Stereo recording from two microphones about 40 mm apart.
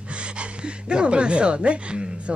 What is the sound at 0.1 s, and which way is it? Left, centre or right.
Speech, right.